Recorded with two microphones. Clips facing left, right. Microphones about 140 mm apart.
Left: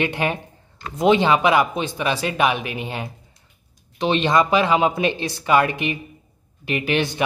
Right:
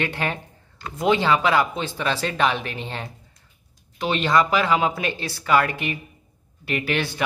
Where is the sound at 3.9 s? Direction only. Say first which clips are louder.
Left 2 dB; 20° left (ahead or behind).